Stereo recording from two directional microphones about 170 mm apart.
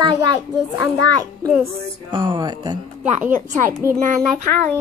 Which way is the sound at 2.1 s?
30° right (ahead or behind).